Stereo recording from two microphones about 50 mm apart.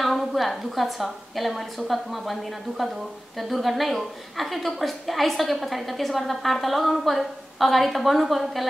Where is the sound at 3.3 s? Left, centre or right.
Centre.